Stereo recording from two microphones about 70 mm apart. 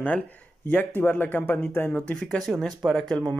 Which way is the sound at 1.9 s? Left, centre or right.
Left.